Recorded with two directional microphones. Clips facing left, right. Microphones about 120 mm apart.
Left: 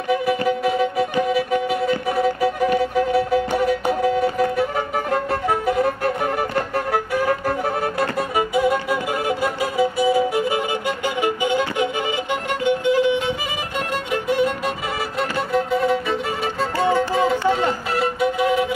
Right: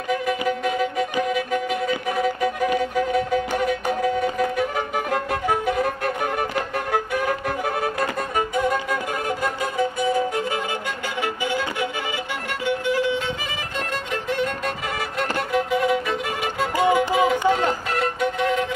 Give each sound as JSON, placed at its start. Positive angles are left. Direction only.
{"t": 0.5, "sound": "music", "side_deg": 5}
{"t": 1.3, "sound": "violin", "side_deg": 5}
{"t": 2.8, "sound": "music", "side_deg": 5}
{"t": 16.7, "sound": "music", "side_deg": -15}